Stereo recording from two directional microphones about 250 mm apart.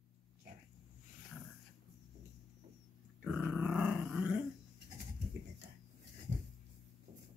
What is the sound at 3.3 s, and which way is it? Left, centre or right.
Growling, centre.